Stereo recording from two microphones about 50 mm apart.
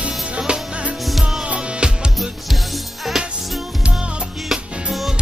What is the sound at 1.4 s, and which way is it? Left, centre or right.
Music, right.